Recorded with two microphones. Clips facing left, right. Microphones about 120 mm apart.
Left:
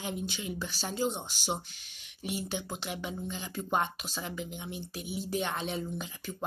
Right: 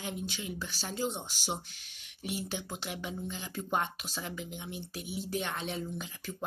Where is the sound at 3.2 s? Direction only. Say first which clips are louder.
Left 2 dB; 5° right (ahead or behind).